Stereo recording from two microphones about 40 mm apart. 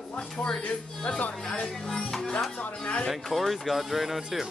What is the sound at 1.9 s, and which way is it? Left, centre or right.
Music, centre.